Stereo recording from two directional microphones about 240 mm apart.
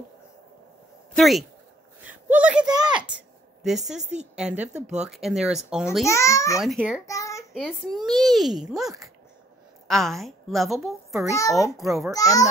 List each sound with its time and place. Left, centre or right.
1.1 s speech: centre
2.0 s a sound: centre
2.6 s speech: centre
3.2 s a sound: centre
4.1 s a child's voice: centre
6.0 s a child's voice: centre
6.6 s a child's voice: centre
7.1 s child singing: centre
7.5 s a child's voice: centre
12.1 s a child's voice: centre